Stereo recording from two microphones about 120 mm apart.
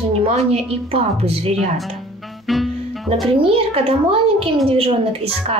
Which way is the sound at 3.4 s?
55° right (ahead or behind).